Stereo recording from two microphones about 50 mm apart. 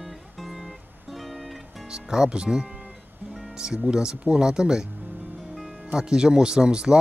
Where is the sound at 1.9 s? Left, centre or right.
Centre.